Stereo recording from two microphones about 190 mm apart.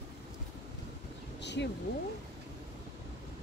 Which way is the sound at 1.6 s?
65° left (ahead or behind).